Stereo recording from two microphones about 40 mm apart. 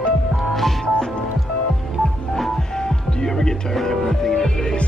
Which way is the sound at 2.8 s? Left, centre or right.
Centre.